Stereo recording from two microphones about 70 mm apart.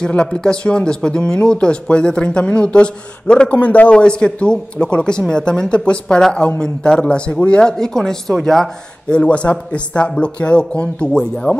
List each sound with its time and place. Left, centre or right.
0.0 s speech: centre
9.1 s speech: centre